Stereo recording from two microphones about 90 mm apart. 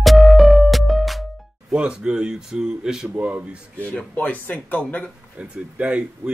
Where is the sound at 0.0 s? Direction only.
Centre (ahead or behind).